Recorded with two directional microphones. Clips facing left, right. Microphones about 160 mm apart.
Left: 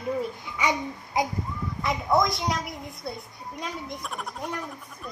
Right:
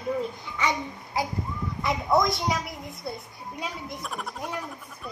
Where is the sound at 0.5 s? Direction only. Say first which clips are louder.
Left 1 dB; 15° left (ahead or behind).